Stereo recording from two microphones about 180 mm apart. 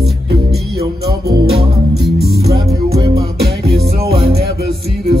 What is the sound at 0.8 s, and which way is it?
Music, 60° right (ahead or behind).